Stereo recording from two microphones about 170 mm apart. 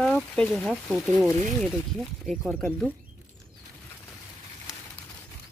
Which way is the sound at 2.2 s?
Centre (ahead or behind).